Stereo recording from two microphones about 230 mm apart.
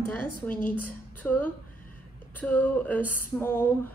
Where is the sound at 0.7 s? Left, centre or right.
Centre.